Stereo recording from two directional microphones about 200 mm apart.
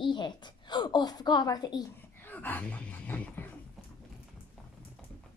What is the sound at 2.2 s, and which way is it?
Speech, 10° left (ahead or behind).